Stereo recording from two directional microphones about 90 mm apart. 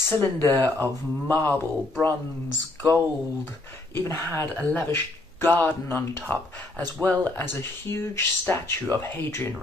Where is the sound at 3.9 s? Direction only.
25° left (ahead or behind).